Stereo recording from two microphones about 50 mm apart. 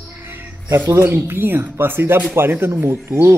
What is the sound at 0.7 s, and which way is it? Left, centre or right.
Speech, right.